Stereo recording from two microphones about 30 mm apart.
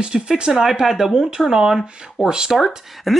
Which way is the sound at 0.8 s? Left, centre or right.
Centre.